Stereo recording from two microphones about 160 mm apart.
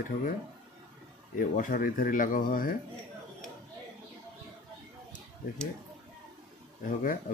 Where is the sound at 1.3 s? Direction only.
60° left (ahead or behind).